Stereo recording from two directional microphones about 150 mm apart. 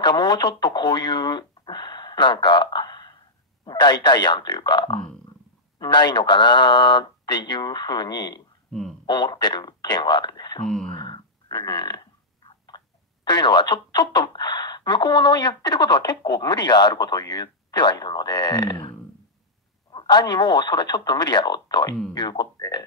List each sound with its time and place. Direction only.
0.0 s speech: 30° left (ahead or behind)
11.0 s a sound: 30° left (ahead or behind)
12.4 s speech: 30° left (ahead or behind)